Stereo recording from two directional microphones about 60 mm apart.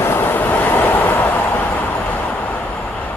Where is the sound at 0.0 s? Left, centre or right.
Left.